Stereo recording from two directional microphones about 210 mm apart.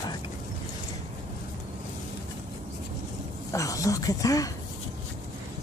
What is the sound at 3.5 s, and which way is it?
Speech, 15° left (ahead or behind).